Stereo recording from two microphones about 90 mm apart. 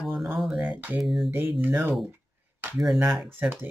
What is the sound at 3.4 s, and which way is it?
Speech, 20° right (ahead or behind).